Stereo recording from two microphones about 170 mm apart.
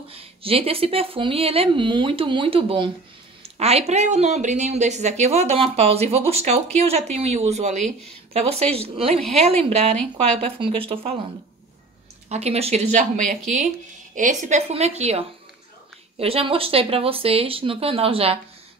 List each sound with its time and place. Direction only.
0.1 s speech: 35° right (ahead or behind)
9.9 s a woman's voice: 5° left (ahead or behind)
10.4 s speech: 30° right (ahead or behind)
12.3 s a woman's voice: 40° right (ahead or behind)
14.7 s speech: 40° right (ahead or behind)